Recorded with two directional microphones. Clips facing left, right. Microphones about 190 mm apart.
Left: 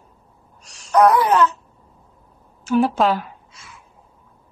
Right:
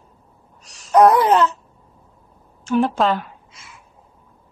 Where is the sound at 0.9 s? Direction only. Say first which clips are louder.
Right 2 dB; 25° right (ahead or behind).